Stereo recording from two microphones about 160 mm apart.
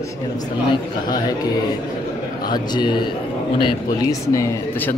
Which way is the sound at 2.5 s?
25° left (ahead or behind).